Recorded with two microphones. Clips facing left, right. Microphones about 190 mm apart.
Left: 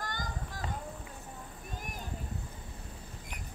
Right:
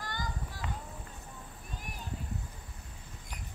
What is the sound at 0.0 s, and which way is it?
Music, 45° left (ahead or behind).